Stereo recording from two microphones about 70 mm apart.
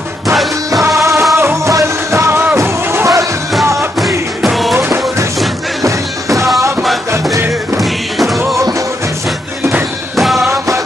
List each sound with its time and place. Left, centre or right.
0.8 s music: right
4.4 s music: centre
4.7 s music: right
5.8 s music: right
7.8 s music: centre
10.1 s music: centre